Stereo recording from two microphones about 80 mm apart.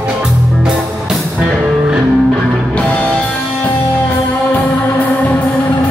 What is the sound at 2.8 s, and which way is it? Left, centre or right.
Music, centre.